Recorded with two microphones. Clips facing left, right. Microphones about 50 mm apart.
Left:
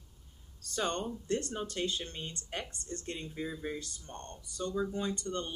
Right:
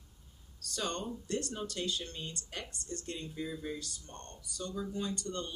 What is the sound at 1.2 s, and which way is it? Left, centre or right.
Speech, left.